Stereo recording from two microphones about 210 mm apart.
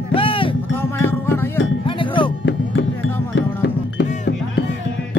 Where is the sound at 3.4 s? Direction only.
60° left (ahead or behind).